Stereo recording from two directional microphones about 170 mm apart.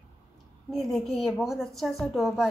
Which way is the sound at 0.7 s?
Centre (ahead or behind).